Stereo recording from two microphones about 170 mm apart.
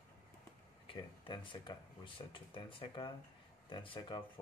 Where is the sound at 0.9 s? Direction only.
30° left (ahead or behind).